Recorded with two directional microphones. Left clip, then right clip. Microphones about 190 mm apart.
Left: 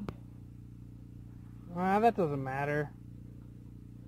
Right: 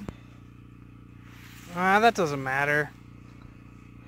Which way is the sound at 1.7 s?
10° right (ahead or behind).